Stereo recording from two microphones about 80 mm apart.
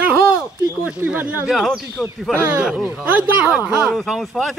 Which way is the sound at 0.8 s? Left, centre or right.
Centre.